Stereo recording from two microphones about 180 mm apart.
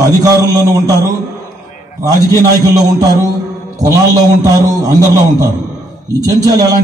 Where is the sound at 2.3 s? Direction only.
20° right (ahead or behind).